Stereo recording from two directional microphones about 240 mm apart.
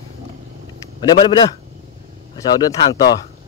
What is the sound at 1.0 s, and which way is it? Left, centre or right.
Speech, centre.